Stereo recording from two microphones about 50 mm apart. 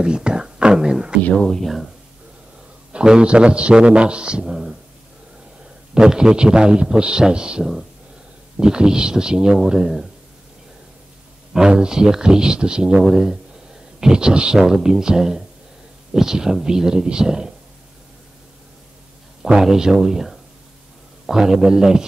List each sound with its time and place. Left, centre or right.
0.0 s whispering: centre
1.3 s speech: centre
1.6 s speech: centre
2.9 s a man's voice: centre
5.9 s speech: centre
11.5 s speech: centre
19.4 s speech: centre